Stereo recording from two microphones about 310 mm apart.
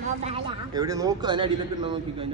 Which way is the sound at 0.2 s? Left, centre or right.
Centre.